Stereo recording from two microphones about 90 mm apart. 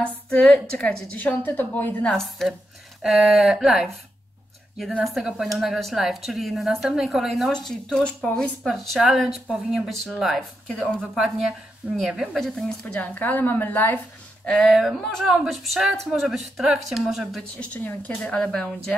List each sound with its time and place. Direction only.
0.0 s a woman's voice: 10° left (ahead or behind)
2.1 s speech: centre (ahead or behind)
5.0 s speech: centre (ahead or behind)
7.5 s speech: 10° left (ahead or behind)
11.1 s speech: 5° right (ahead or behind)
12.8 s a woman's voice: 20° left (ahead or behind)
14.4 s speech: 5° left (ahead or behind)
17.6 s a woman's voice: 15° left (ahead or behind)